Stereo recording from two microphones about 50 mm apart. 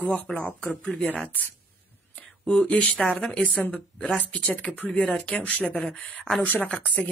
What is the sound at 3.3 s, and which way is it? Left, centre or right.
Speech, left.